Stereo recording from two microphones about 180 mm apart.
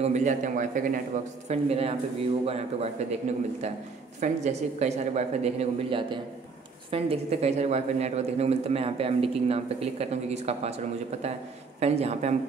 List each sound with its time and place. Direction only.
0.0 s a man's voice: 40° right (ahead or behind)
1.5 s a man's voice: 35° right (ahead or behind)
4.2 s a man's voice: 40° right (ahead or behind)